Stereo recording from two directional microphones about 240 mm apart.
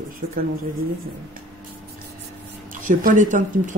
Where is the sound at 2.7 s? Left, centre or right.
Right.